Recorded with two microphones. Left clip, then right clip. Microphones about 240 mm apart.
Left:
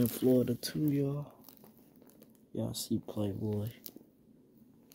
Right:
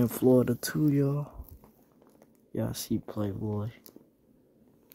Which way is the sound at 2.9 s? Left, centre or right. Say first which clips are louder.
Right 3 dB; centre.